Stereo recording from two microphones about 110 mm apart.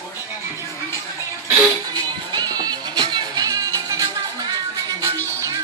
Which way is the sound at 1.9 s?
40° right (ahead or behind).